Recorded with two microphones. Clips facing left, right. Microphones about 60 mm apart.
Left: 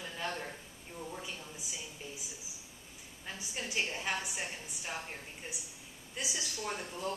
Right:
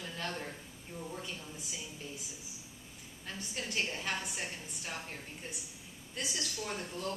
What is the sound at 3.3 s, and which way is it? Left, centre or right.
Speech, centre.